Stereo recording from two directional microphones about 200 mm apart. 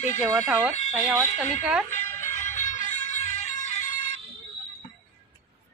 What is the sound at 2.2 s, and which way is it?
Music, 35° left (ahead or behind).